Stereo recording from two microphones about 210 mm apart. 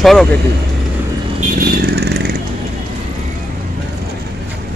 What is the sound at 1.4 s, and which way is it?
Vehicle, 45° right (ahead or behind).